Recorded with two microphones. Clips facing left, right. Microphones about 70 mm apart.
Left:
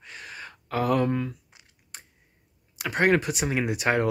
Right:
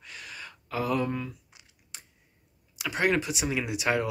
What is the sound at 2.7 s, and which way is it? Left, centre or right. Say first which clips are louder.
Speech: left 4 dB; left.